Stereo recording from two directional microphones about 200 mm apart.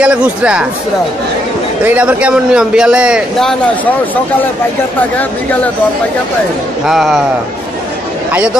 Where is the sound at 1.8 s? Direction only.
5° right (ahead or behind).